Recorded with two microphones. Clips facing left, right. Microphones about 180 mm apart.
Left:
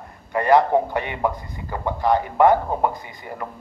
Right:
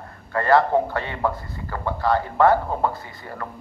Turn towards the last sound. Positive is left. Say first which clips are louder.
# left 1 dB
turn(degrees=15)  # may be behind; listen again after turning